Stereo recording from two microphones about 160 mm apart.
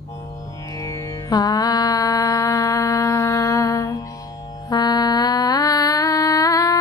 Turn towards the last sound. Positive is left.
turn(degrees=20)  # may be behind; listen again after turning